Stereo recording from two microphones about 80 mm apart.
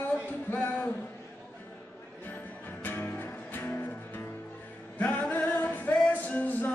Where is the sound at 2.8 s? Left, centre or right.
Left.